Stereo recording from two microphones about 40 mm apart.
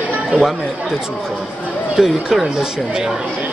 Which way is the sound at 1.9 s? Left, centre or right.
Centre.